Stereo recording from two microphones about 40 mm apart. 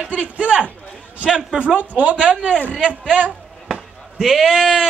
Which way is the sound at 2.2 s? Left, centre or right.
Centre.